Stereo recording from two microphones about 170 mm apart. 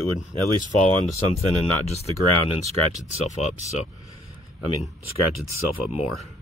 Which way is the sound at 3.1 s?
40° right (ahead or behind).